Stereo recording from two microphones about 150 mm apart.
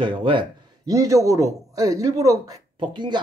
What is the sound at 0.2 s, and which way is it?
Speech, 30° right (ahead or behind).